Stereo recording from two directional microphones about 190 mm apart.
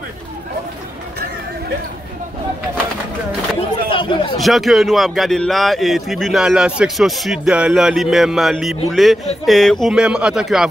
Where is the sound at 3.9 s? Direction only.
25° left (ahead or behind).